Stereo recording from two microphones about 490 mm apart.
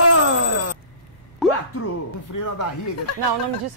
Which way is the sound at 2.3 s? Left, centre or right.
Left.